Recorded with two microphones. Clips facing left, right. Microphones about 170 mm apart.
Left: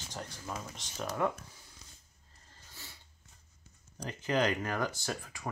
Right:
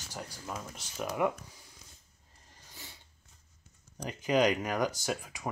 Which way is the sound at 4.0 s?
15° right (ahead or behind).